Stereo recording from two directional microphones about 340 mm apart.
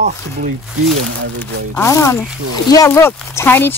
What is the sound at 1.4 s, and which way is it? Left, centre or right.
Speech, centre.